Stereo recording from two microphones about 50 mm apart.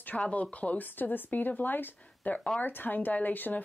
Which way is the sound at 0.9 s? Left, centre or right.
Left.